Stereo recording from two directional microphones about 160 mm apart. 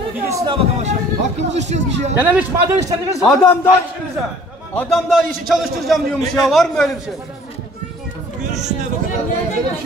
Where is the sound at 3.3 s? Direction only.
10° left (ahead or behind).